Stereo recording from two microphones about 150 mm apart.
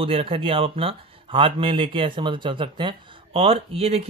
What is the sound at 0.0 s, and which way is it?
Speech, 40° right (ahead or behind).